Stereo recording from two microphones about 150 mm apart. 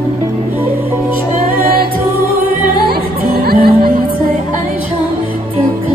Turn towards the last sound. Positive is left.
turn(degrees=-75)  # may be behind; listen again after turning